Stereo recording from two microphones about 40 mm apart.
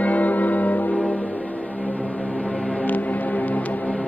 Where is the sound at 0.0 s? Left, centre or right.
Left.